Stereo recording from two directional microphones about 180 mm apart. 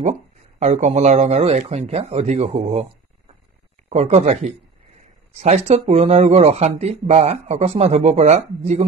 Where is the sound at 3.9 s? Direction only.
35° right (ahead or behind).